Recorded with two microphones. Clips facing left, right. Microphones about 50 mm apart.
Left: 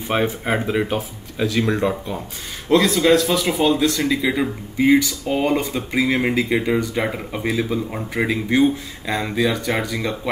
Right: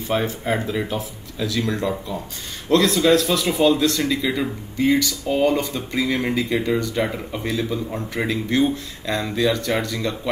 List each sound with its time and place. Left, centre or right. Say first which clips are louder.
0.1 s speech: left 2 dB; left
2.7 s speech: left 1 dB; centre